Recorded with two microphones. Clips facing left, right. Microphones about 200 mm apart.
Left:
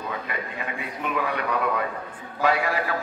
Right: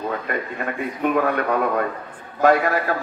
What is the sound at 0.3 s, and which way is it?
A man's voice, 50° right (ahead or behind).